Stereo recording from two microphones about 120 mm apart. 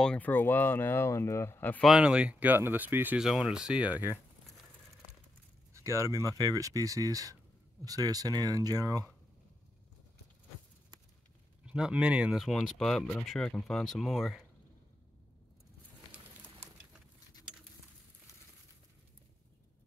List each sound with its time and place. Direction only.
0.0 s speech: 5° left (ahead or behind)
0.3 s speech: 15° left (ahead or behind)
1.8 s speech: 5° right (ahead or behind)
3.2 s speech: 5° right (ahead or behind)
5.7 s speech: 25° right (ahead or behind)
11.6 s speech: 5° right (ahead or behind)